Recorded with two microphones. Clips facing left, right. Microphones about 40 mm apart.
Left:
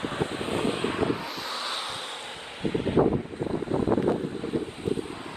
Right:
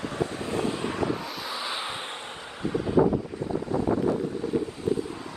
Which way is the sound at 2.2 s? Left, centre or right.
Left.